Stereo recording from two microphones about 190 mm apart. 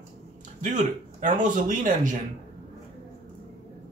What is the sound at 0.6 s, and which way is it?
Speech, 40° right (ahead or behind).